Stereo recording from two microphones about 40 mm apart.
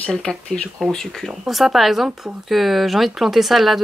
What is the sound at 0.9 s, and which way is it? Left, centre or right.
Speech, centre.